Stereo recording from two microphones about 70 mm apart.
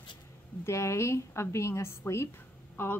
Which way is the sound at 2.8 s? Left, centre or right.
Left.